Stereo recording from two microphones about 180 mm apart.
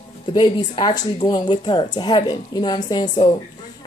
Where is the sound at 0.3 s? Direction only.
25° left (ahead or behind).